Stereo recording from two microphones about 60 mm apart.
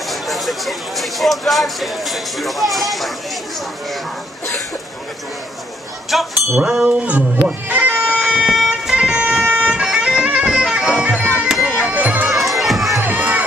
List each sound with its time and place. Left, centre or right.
0.1 s speech: centre
6.0 s speech: centre
6.6 s music: centre
7.9 s bagpipes: centre
8.3 s vehicle: centre
10.2 s bagpipes: centre
11.8 s music: right
12.3 s bagpipes: centre
13.0 s music: right